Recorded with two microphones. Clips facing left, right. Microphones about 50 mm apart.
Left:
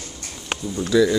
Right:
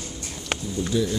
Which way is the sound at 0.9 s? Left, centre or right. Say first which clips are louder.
Left 8 dB; left.